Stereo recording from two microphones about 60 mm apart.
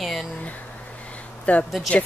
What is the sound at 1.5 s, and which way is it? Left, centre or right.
Speech, left.